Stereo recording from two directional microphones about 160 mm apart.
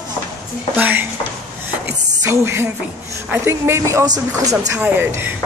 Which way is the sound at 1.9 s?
15° right (ahead or behind).